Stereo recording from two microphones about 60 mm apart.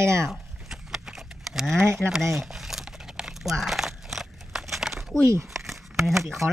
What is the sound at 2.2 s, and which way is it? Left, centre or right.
Crumpling, centre.